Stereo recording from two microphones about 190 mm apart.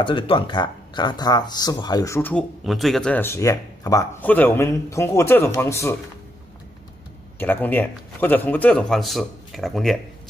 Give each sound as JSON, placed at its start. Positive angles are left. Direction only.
{"t": 0.0, "sound": "speech", "side_deg": 25}
{"t": 2.6, "sound": "speech", "side_deg": 0}
{"t": 7.3, "sound": "speech", "side_deg": 10}